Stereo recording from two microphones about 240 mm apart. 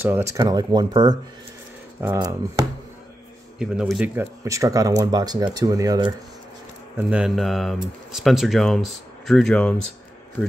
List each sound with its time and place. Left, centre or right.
0.0 s speech: centre
3.5 s speech: centre
7.0 s speech: centre